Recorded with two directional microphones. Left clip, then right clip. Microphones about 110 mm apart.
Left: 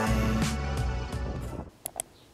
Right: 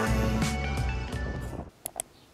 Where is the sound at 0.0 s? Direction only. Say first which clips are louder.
Even; centre (ahead or behind).